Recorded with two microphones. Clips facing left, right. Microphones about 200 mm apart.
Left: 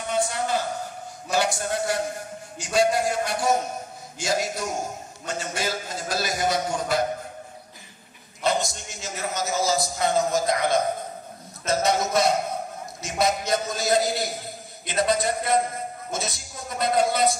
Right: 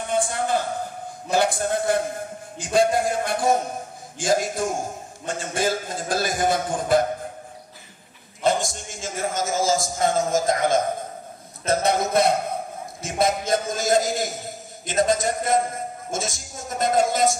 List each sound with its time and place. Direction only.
0.1 s a sound: 50° right (ahead or behind)
1.3 s speech: 50° right (ahead or behind)
8.5 s a man's voice: 50° right (ahead or behind)